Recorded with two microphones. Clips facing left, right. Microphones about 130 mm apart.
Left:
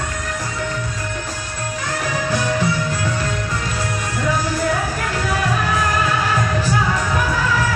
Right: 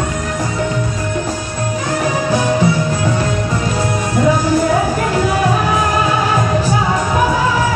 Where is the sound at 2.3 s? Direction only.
20° right (ahead or behind).